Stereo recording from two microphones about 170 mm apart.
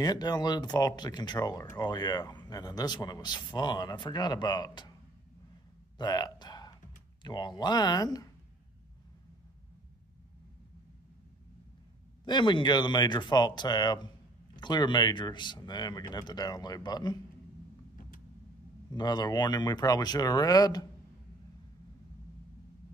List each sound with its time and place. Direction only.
0.0 s speech: 25° left (ahead or behind)
5.9 s a sound: 25° left (ahead or behind)
7.2 s speech: 25° left (ahead or behind)
12.3 s speech: 25° left (ahead or behind)
18.9 s speech: 25° left (ahead or behind)